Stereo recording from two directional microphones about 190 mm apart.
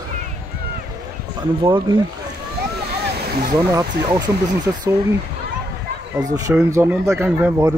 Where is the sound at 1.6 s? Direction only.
25° right (ahead or behind).